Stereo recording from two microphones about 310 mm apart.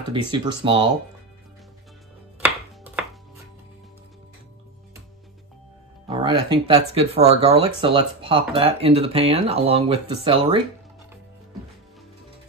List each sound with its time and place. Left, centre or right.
0.1 s speech: centre
2.4 s chopping: centre
6.0 s speech: centre